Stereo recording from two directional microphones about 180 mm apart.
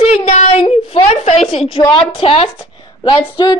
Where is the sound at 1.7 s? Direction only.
25° left (ahead or behind).